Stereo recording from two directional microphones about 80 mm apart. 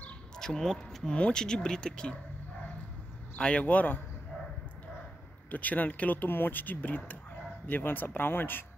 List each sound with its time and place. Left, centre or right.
0.4 s speech: centre
3.3 s speech: centre
5.5 s speech: centre